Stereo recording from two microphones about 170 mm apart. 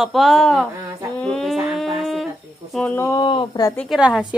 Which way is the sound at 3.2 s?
30° left (ahead or behind).